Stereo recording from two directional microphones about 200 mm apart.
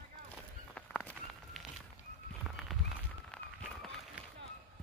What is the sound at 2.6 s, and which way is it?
Run, centre (ahead or behind).